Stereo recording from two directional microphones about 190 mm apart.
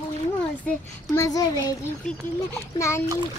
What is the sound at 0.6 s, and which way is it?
A child's voice, 15° left (ahead or behind).